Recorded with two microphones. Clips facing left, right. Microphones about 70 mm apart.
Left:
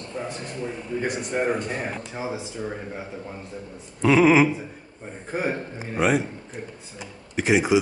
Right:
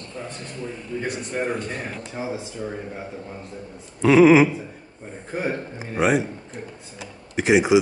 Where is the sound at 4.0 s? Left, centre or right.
Centre.